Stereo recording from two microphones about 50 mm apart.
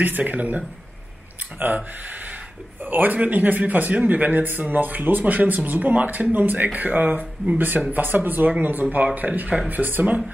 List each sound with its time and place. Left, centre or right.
0.0 s speech: right
1.6 s speech: right
2.0 s a sound: right
2.8 s speech: right